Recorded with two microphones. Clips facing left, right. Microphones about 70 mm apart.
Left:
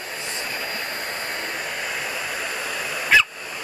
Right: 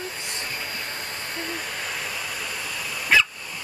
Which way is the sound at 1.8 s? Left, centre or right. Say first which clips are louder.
Left 3 dB; left.